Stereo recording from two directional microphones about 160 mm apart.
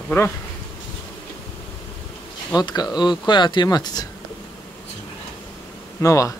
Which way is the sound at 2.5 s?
25° left (ahead or behind).